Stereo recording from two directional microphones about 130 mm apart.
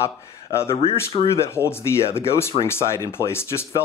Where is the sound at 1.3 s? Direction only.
20° left (ahead or behind).